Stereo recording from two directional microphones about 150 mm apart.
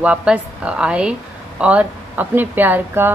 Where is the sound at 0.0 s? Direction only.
10° right (ahead or behind).